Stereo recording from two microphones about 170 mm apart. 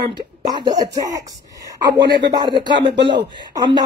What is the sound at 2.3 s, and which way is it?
Speech, 25° right (ahead or behind).